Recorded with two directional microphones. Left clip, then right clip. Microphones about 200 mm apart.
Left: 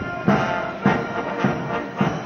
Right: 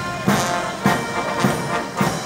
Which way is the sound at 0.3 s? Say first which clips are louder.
Right 1 dB; 55° right (ahead or behind).